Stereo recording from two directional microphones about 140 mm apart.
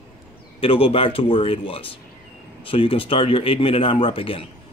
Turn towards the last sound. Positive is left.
turn(degrees=40)  # may be behind; listen again after turning